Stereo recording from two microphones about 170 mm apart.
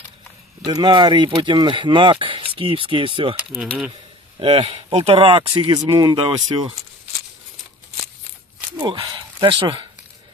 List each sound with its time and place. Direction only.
0.7 s speech: 25° right (ahead or behind)
3.3 s speech: 5° right (ahead or behind)
4.4 s speech: 35° right (ahead or behind)
8.7 s speech: 25° right (ahead or behind)